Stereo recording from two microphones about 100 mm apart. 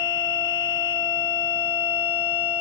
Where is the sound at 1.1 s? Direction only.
55° left (ahead or behind).